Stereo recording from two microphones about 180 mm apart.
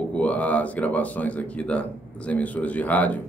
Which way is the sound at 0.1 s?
10° left (ahead or behind).